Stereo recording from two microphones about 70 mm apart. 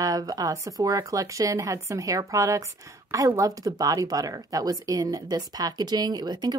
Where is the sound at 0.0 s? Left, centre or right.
Right.